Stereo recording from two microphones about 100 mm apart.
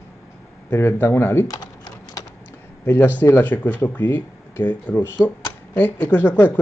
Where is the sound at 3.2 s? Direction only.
20° left (ahead or behind).